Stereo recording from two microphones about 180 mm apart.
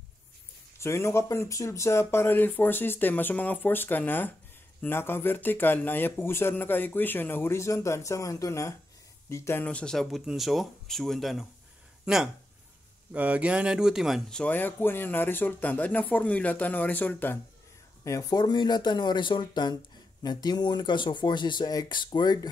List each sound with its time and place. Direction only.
0.7 s speech: 15° left (ahead or behind)